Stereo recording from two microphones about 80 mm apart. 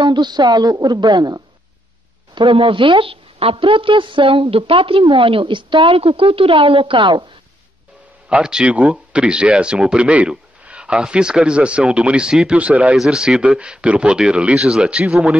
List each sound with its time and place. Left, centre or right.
0.0 s a woman's voice: right
2.3 s speech: right
8.3 s speech: centre
12.9 s speech: centre